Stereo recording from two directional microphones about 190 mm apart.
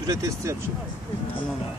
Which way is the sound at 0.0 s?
20° right (ahead or behind).